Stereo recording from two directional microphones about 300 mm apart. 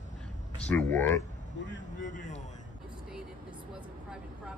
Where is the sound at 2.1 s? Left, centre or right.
Left.